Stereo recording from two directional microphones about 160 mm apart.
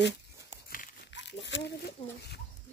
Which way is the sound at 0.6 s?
75° left (ahead or behind).